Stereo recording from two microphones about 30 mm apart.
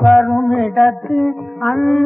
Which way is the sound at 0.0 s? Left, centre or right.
Centre.